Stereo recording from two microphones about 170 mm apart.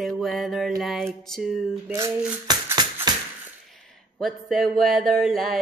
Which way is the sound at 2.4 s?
25° right (ahead or behind).